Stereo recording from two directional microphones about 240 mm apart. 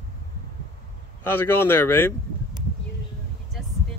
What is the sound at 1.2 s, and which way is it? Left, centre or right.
Speech, centre.